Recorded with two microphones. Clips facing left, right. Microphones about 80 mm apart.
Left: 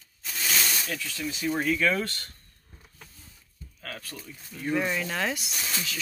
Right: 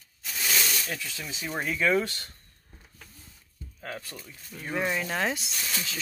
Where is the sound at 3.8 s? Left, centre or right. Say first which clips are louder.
Right 2 dB; right.